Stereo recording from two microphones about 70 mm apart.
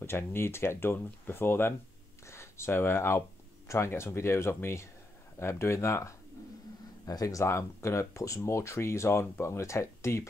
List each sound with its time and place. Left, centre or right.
0.0 s speech: left
7.1 s speech: left
7.4 s speech: left